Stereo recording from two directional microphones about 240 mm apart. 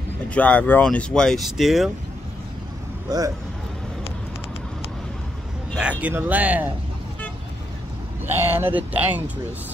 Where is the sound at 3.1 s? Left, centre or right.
Centre.